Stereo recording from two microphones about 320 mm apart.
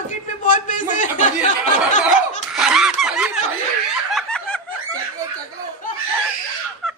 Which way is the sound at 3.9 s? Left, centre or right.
Centre.